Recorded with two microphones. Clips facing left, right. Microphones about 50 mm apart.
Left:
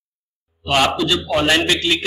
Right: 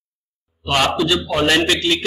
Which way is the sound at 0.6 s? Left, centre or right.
Centre.